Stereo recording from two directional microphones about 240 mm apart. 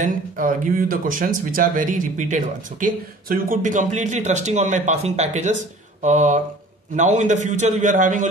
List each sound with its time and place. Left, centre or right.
0.0 s speech: right